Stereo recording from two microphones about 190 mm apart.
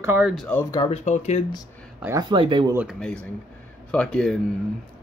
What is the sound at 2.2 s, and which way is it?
Speech, 25° right (ahead or behind).